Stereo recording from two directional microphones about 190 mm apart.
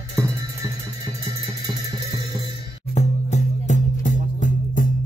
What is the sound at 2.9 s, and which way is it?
Music, 35° left (ahead or behind).